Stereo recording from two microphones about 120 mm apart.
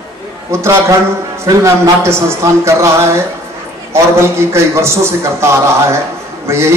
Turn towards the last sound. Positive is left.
turn(degrees=-20)  # may be behind; listen again after turning